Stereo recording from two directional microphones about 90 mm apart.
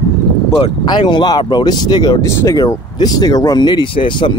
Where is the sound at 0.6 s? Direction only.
60° left (ahead or behind).